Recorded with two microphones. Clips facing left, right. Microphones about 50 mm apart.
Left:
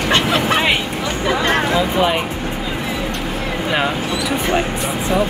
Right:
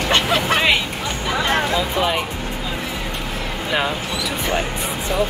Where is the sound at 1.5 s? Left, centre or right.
Centre.